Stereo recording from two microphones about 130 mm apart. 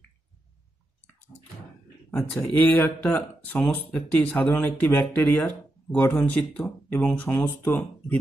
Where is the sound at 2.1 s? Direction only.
10° left (ahead or behind).